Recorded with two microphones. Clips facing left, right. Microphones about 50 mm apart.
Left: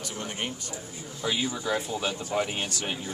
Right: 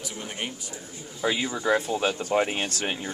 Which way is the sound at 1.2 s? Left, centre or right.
Right.